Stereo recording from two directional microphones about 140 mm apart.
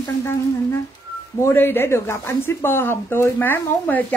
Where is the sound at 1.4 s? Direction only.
20° left (ahead or behind).